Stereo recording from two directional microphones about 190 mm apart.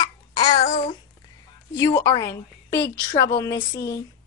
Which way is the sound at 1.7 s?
15° left (ahead or behind).